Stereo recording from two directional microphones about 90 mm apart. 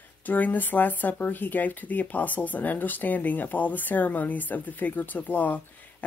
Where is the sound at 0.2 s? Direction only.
20° left (ahead or behind).